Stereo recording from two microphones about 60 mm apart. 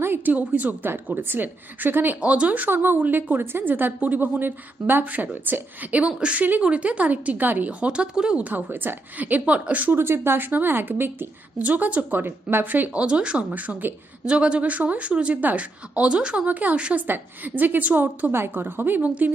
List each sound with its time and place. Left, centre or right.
0.0 s a woman's voice: right
2.2 s a woman's voice: right
2.6 s a woman's voice: right
7.8 s a woman's voice: centre
9.9 s a woman's voice: right
11.5 s a woman's voice: right
13.0 s a woman's voice: centre